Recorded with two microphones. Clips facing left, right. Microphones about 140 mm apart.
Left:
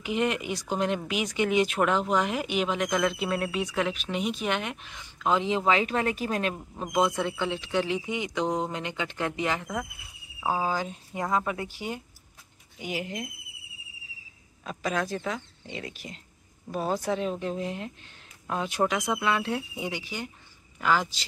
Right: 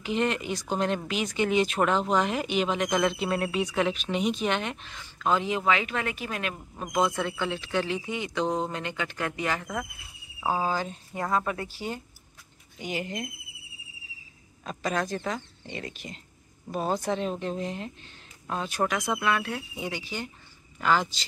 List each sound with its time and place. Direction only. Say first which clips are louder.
0.0 s speech: even; 10° left (ahead or behind)
2.9 s speech: right 1 dB; 25° right (ahead or behind)
3.2 s speech: right 1 dB; centre (ahead or behind); by 6.5 s 40° left (ahead or behind)
6.8 s speech: left 1 dB; 20° left (ahead or behind)
10.4 s speech: even; 5° left (ahead or behind)
12.7 s speech: right 1 dB; 5° left (ahead or behind)
14.6 s speech: even; 5° left (ahead or behind)
18.5 s speech: left 1 dB; 15° left (ahead or behind)